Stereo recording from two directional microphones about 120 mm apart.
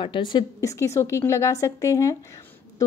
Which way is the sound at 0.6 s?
25° left (ahead or behind).